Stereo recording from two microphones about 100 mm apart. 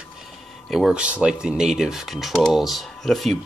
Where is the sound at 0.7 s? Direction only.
5° right (ahead or behind).